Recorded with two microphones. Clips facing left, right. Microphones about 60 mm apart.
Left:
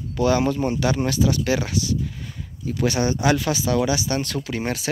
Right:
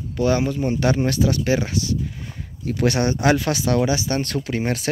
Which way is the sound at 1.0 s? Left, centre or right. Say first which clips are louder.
Right 1 dB; right.